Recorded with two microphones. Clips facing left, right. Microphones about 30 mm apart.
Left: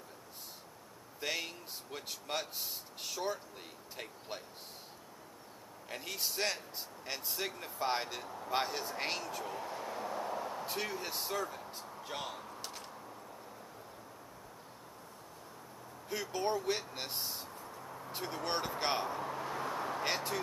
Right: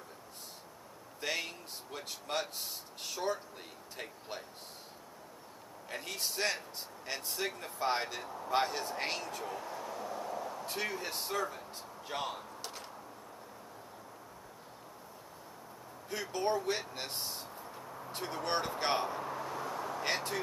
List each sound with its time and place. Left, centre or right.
1.2 s speech: centre
5.9 s speech: centre
9.6 s a sound: centre
10.7 s speech: centre
16.1 s speech: centre
19.5 s vehicle: centre